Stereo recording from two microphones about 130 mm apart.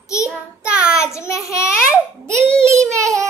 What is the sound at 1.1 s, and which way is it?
Speech, 20° left (ahead or behind).